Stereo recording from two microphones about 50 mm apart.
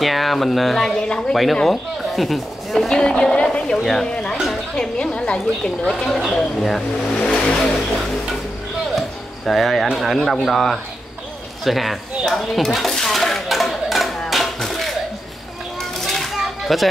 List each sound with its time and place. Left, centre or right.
0.0 s speech: centre
2.9 s speech: centre
4.7 s a woman's voice: centre
5.9 s speech: centre
7.3 s vehicle: centre
8.9 s a sound: centre
10.2 s speech: centre
11.6 s dishes: centre
16.1 s a sound: centre